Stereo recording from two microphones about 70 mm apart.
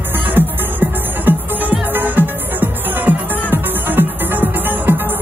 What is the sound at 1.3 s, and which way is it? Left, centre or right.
Music, right.